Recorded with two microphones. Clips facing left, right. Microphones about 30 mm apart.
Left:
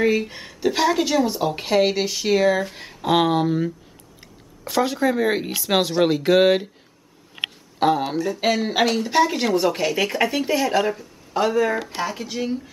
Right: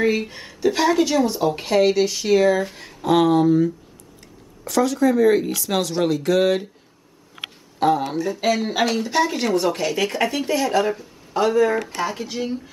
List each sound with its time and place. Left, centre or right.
0.3 s a woman's voice: centre; by 6.7 s left
8.1 s a woman's voice: centre